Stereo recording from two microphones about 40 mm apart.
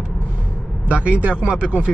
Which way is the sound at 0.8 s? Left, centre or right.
Right.